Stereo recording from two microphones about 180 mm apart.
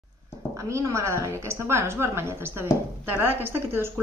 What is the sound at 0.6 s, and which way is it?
Speech, 15° right (ahead or behind).